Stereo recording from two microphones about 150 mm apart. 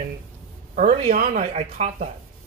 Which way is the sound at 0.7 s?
60° right (ahead or behind).